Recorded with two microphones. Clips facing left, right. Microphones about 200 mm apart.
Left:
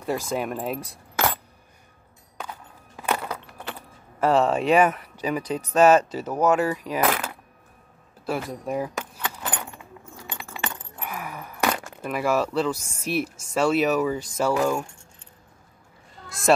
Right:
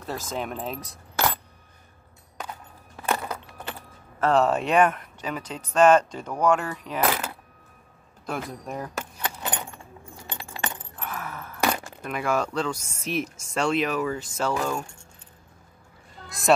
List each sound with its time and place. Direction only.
0.0 s speech: 10° left (ahead or behind)
3.0 s a sound: 10° left (ahead or behind)
4.2 s speech: 5° left (ahead or behind)
8.3 s speech: 5° left (ahead or behind)
11.0 s chink: 10° left (ahead or behind)
11.6 s speech: 5° left (ahead or behind)
16.3 s music: centre (ahead or behind)